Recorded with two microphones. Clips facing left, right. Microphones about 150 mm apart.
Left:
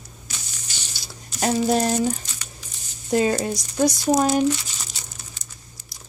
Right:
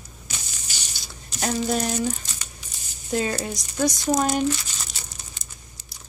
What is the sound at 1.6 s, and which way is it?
Speech, 40° left (ahead or behind).